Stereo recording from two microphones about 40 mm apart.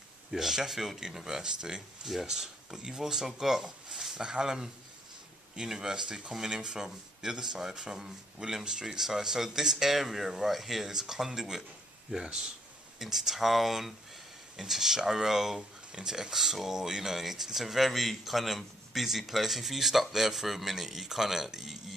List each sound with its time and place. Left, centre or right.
0.3 s speech: centre
12.2 s speech: right
13.0 s speech: centre